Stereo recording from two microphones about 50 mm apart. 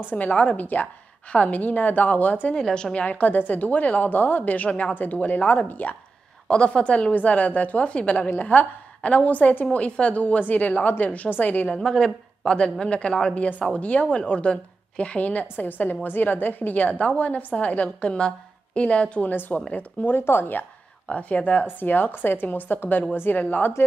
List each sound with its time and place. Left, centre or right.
0.1 s a woman's voice: left
2.5 s a woman's voice: centre; by 5.9 s left
6.5 s a woman's voice: centre
8.3 s a woman's voice: left
11.6 s a woman's voice: centre
19.3 s a woman's voice: left
21.1 s a woman's voice: left